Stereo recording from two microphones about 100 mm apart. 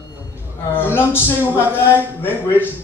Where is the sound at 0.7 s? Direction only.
20° left (ahead or behind).